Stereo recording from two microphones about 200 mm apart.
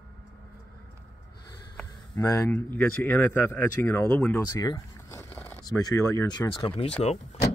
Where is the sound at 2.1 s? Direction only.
15° left (ahead or behind).